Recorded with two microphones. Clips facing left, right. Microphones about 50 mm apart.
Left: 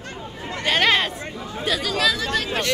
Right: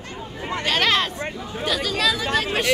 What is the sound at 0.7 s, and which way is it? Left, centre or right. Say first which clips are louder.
Speech: left 2 dB; centre.